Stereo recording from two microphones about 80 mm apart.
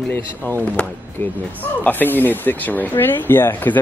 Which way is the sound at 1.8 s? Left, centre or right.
Left.